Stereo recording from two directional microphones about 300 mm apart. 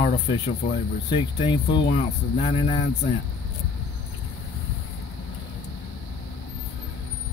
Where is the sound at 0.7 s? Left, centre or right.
Centre.